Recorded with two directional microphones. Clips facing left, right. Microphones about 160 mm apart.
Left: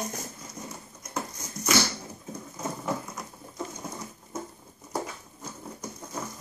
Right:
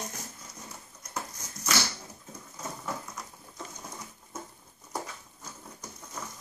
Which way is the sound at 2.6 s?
20° left (ahead or behind).